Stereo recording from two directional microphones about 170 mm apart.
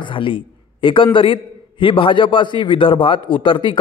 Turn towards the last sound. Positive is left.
turn(degrees=30)  # may be behind; listen again after turning